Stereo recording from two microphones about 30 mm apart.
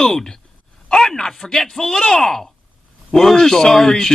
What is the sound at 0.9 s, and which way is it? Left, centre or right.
A man's voice, centre.